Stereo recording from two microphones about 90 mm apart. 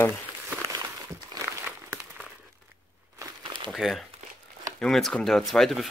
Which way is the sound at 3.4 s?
65° right (ahead or behind).